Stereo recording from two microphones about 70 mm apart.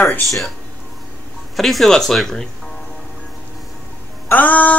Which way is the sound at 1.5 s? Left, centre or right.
Centre.